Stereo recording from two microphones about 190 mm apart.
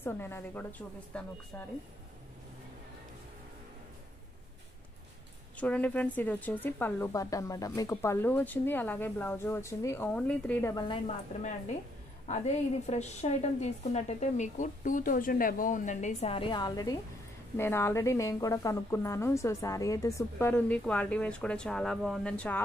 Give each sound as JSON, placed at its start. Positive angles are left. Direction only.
{"t": 0.0, "sound": "a woman's voice", "side_deg": 10}
{"t": 5.6, "sound": "a woman's voice", "side_deg": 10}
{"t": 10.7, "sound": "a woman's voice", "side_deg": 20}
{"t": 12.3, "sound": "a woman's voice", "side_deg": 35}